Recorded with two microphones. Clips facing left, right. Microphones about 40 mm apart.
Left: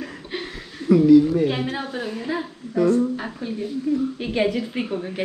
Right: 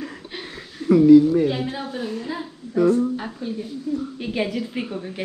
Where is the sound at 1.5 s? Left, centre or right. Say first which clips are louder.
Left 1 dB; centre.